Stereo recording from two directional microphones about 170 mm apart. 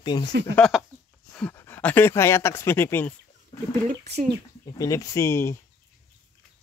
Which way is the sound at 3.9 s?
45° right (ahead or behind).